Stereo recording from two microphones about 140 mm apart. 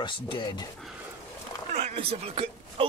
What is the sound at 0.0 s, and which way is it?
Speech, 35° left (ahead or behind).